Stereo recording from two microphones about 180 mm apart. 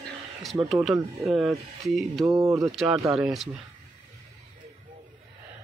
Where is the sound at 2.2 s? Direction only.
15° right (ahead or behind).